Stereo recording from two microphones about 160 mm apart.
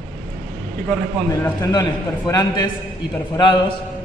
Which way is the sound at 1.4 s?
25° left (ahead or behind).